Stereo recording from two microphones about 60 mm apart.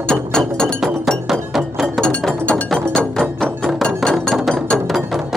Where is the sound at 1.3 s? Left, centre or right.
Centre.